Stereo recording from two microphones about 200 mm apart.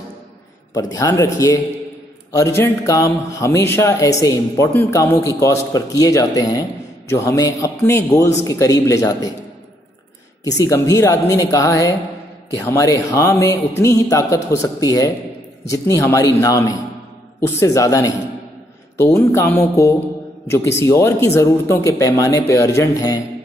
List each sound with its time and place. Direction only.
0.9 s a man's voice: 15° left (ahead or behind)
10.4 s a man's voice: 15° left (ahead or behind)